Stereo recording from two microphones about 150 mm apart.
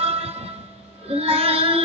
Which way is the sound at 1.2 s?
40° right (ahead or behind).